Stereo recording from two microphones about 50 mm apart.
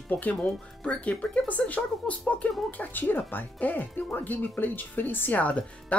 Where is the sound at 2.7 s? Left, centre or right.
Left.